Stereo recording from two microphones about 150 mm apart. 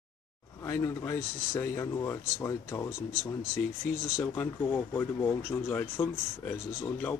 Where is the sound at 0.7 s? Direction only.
15° left (ahead or behind).